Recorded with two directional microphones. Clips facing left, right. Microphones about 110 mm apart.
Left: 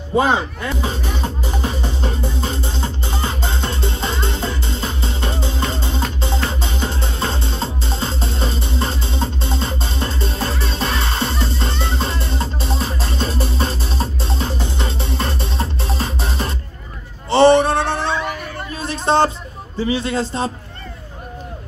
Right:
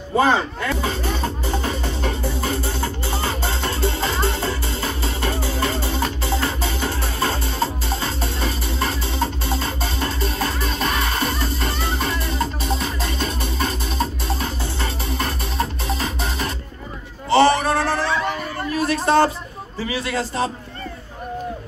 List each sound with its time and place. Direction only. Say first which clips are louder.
0.2 s music: even; 15° left (ahead or behind)
17.3 s sheep: left 4 dB; 30° left (ahead or behind)
18.8 s a sound: even; 25° left (ahead or behind)
19.9 s a man's voice: left 4 dB; 25° left (ahead or behind)